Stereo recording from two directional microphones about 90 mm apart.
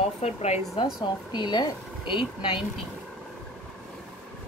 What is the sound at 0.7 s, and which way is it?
Speech, 60° left (ahead or behind).